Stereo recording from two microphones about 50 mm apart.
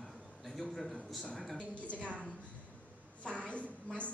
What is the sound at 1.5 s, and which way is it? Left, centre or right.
Speech, left.